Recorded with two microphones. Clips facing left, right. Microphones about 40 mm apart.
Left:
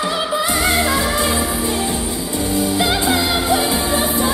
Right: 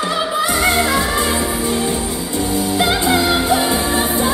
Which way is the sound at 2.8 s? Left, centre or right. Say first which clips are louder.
Right 4 dB; right.